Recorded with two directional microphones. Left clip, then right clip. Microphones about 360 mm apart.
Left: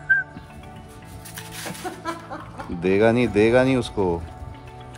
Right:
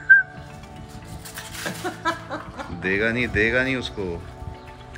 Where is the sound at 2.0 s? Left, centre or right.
Centre.